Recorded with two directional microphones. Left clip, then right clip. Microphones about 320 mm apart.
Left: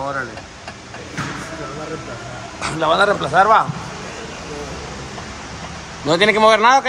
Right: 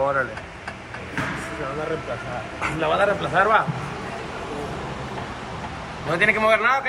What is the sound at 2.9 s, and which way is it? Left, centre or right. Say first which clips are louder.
Speech: left 6 dB; centre.